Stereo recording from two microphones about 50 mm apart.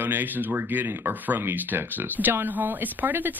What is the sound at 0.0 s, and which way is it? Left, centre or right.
Speech, right.